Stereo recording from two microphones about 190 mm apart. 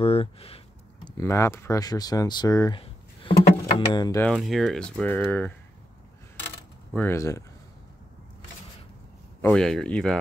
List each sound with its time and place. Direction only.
0.0 s speech: 30° left (ahead or behind)
1.0 s speech: 15° left (ahead or behind)
2.8 s drawer open or close: 30° left (ahead or behind)
4.2 s speech: centre (ahead or behind)
6.9 s speech: 10° left (ahead or behind)
9.4 s speech: 5° left (ahead or behind)